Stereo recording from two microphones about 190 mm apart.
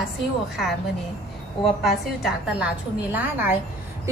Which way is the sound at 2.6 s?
10° right (ahead or behind).